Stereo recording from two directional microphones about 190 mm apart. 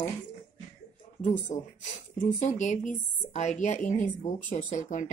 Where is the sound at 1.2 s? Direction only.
40° left (ahead or behind).